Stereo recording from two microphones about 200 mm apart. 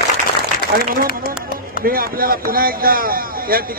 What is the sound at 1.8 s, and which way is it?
Speech, 45° right (ahead or behind).